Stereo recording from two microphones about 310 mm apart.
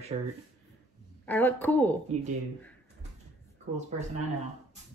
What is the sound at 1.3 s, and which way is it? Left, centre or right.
Speech, centre.